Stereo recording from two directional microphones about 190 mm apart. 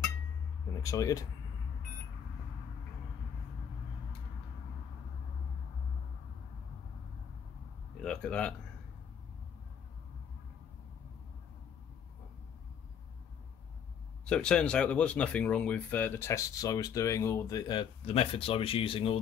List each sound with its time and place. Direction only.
0.8 s speech: 20° left (ahead or behind)
8.0 s a sound: 5° left (ahead or behind)
14.2 s speech: 5° left (ahead or behind); by 19.1 s 30° left (ahead or behind)